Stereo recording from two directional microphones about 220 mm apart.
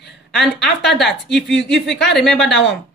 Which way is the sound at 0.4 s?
Centre (ahead or behind).